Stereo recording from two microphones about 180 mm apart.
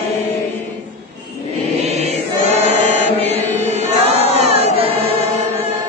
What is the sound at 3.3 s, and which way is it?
Chant, 40° right (ahead or behind).